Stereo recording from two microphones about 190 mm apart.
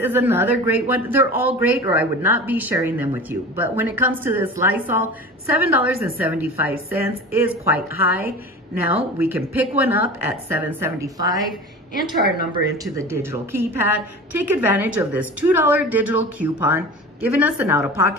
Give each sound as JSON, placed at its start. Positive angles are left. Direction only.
{"t": 0.0, "sound": "speech", "side_deg": -10}
{"t": 8.9, "sound": "speech", "side_deg": -10}
{"t": 11.9, "sound": "a woman's voice", "side_deg": 50}
{"t": 12.9, "sound": "speech", "side_deg": -15}